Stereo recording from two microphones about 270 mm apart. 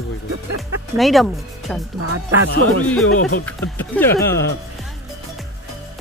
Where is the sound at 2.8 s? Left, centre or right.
Centre.